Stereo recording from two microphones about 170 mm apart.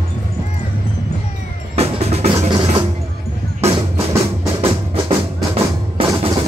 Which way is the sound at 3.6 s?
15° right (ahead or behind).